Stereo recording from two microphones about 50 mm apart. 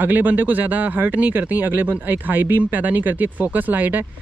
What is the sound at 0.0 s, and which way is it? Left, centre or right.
Speech, right.